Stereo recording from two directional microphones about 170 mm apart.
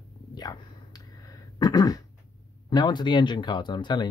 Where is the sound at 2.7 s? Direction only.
25° left (ahead or behind).